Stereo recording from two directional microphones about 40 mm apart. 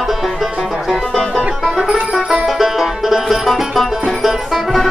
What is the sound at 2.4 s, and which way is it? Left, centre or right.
Music, centre.